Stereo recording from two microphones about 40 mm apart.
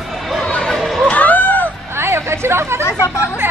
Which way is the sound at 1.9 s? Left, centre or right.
Right.